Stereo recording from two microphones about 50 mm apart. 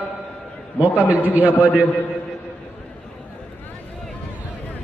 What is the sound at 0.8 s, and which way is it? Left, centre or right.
Speech, right.